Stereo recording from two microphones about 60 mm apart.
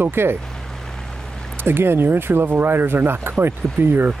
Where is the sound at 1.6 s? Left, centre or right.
Right.